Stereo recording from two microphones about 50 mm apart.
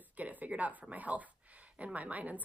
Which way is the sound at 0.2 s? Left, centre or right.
Right.